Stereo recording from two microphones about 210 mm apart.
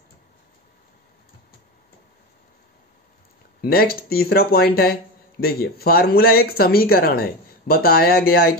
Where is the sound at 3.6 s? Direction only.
45° left (ahead or behind).